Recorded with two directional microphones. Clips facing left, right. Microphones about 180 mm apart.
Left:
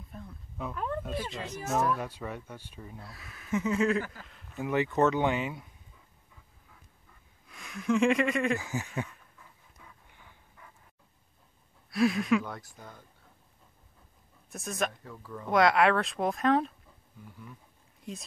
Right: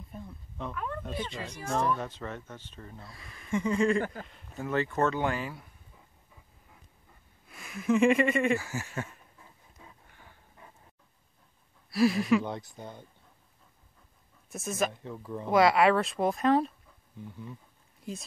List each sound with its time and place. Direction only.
0.1 s dog: centre (ahead or behind)
1.0 s speech: 5° left (ahead or behind)
4.0 s speech: 50° right (ahead or behind)
4.6 s speech: 15° left (ahead or behind)
7.4 s speech: centre (ahead or behind)
8.5 s speech: 15° left (ahead or behind)
9.0 s dog: 25° right (ahead or behind)
11.9 s speech: centre (ahead or behind)
12.4 s speech: 25° right (ahead or behind)
14.5 s speech: centre (ahead or behind)
14.9 s speech: 25° right (ahead or behind)
15.5 s speech: centre (ahead or behind)
17.2 s speech: 25° right (ahead or behind)
18.0 s speech: centre (ahead or behind)